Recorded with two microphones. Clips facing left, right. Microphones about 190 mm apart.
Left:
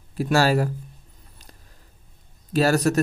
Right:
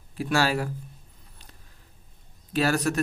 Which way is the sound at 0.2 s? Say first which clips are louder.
Left 5 dB; 40° left (ahead or behind).